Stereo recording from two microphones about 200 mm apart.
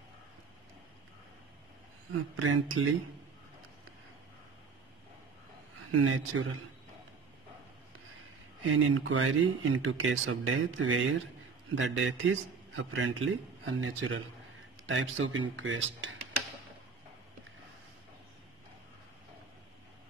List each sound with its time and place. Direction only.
2.1 s speech: 90° right
5.9 s speech: 90° right
8.6 s a man's voice: 75° right (ahead or behind)